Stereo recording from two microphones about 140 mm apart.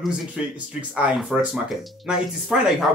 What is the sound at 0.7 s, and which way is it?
Speech, 10° right (ahead or behind).